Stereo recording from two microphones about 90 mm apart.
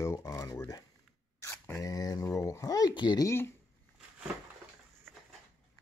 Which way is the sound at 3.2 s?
30° left (ahead or behind).